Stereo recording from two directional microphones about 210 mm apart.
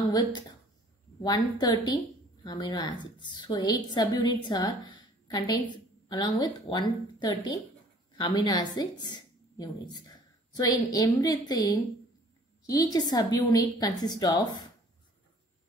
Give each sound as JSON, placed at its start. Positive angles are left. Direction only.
{"t": 1.2, "sound": "a woman's voice", "side_deg": 20}